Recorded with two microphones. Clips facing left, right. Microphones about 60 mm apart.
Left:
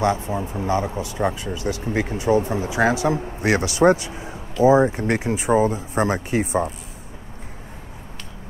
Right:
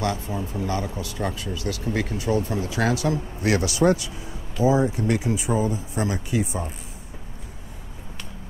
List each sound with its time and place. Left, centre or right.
0.0 s speech: left